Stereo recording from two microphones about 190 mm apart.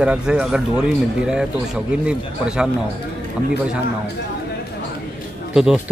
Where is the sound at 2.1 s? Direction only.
5° right (ahead or behind).